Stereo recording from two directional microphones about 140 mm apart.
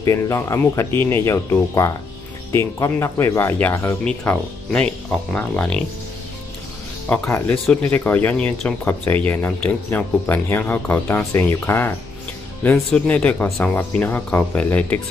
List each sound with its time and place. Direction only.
0.0 s speech: 20° left (ahead or behind); by 5.8 s 5° left (ahead or behind)
7.2 s speech: 15° left (ahead or behind)